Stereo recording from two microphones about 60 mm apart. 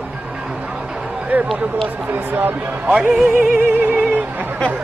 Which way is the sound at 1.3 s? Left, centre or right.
Right.